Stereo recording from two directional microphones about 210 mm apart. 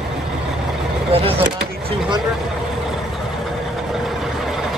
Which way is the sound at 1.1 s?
25° right (ahead or behind).